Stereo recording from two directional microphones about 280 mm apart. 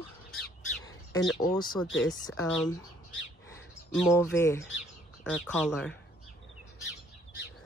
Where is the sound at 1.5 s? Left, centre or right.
Centre.